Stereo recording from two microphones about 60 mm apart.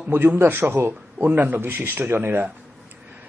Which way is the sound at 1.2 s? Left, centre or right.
Right.